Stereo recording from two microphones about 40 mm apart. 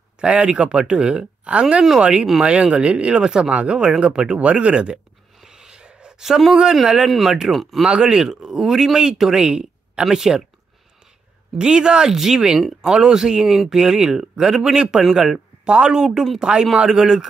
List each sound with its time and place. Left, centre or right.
0.2 s speech: right
5.4 s a sound: centre
6.2 s speech: centre
7.1 s speech: centre
7.8 s speech: centre
10.0 s speech: centre
11.5 s speech: right